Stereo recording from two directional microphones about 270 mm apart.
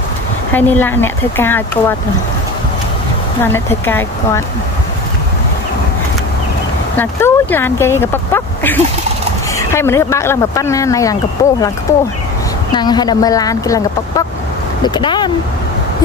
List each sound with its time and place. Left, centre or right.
0.5 s speech: centre
3.5 s speech: centre
7.0 s speech: centre
12.7 s speech: centre